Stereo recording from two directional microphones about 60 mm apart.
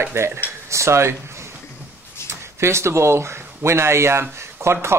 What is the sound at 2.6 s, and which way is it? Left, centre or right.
Speech, right.